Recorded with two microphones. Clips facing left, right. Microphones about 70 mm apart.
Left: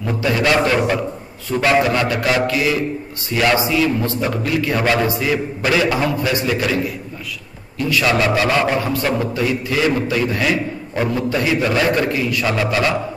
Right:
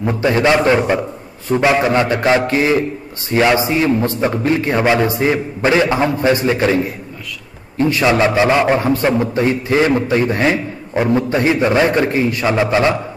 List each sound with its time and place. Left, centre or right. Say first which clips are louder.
0.0 s a man's voice: right 4 dB; right